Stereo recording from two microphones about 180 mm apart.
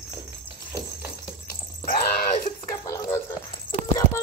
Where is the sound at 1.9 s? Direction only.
55° left (ahead or behind).